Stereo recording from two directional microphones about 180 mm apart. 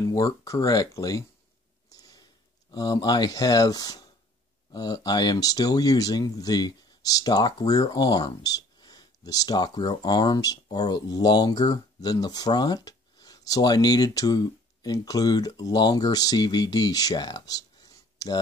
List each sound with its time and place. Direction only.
0.0 s speech: 20° left (ahead or behind)
1.9 s a sound: 20° left (ahead or behind)
2.7 s speech: 25° left (ahead or behind)